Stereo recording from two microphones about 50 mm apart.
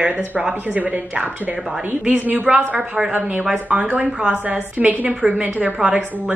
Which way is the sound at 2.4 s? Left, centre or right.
Right.